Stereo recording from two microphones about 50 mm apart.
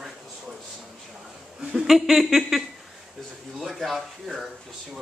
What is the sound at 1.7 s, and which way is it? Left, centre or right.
Speech, centre.